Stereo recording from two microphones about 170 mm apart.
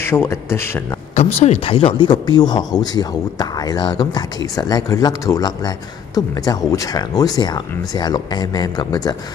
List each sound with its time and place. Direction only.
0.0 s a man's voice: 15° left (ahead or behind)
1.1 s speech: 40° left (ahead or behind); by 9.1 s 20° left (ahead or behind)